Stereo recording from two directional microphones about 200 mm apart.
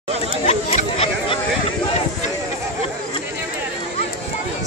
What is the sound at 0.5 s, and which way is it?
Chatter, 35° left (ahead or behind).